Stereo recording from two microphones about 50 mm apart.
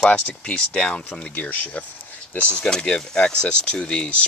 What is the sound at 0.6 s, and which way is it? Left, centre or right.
Speech, left.